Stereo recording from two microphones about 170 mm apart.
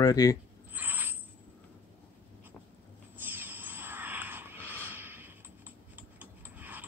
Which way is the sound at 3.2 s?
10° right (ahead or behind).